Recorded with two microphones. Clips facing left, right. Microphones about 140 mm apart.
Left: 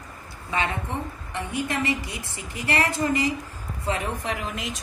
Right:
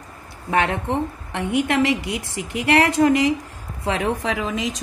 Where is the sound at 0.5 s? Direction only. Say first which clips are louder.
Right 7 dB; 65° right (ahead or behind).